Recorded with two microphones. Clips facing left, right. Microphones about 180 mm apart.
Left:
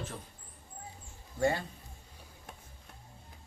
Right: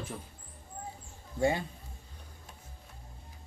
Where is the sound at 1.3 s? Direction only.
15° right (ahead or behind).